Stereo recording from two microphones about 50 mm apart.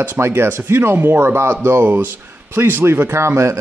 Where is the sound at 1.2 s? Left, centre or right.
Right.